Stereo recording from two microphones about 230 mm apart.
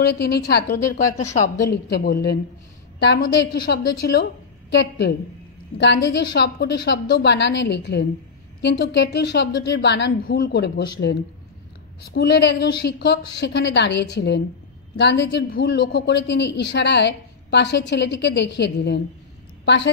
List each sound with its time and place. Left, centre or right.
0.0 s a woman's voice: left
1.3 s a woman's voice: left
1.7 s a woman's voice: left
3.8 s a woman's voice: left
4.1 s a woman's voice: left
12.0 s a woman's voice: left